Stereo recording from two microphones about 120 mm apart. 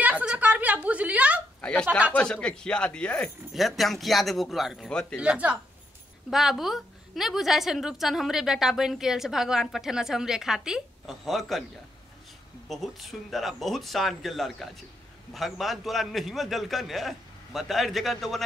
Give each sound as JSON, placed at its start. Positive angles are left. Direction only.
{"t": 0.0, "sound": "a sound", "side_deg": -10}
{"t": 1.6, "sound": "speech", "side_deg": 10}
{"t": 1.9, "sound": "a woman's voice", "side_deg": -10}
{"t": 2.1, "sound": "a woman's voice", "side_deg": 10}
{"t": 5.2, "sound": "a woman's voice", "side_deg": -10}
{"t": 12.6, "sound": "a woman's voice", "side_deg": 0}